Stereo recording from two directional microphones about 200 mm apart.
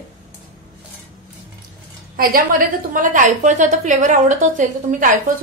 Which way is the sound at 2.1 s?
45° right (ahead or behind).